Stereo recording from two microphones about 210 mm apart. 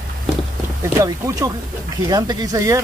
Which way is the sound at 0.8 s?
15° right (ahead or behind).